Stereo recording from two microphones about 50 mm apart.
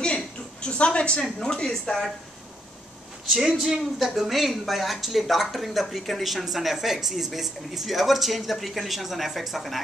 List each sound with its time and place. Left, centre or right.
0.0 s a sound: centre
1.2 s speech: centre
3.3 s a woman's voice: centre